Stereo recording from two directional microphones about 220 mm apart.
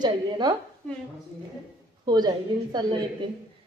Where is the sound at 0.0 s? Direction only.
20° right (ahead or behind).